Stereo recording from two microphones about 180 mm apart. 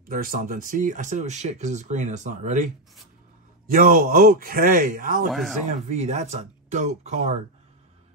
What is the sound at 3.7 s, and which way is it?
Speech, 50° right (ahead or behind).